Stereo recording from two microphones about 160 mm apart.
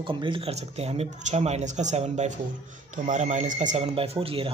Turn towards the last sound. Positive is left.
turn(degrees=-35)  # may be behind; listen again after turning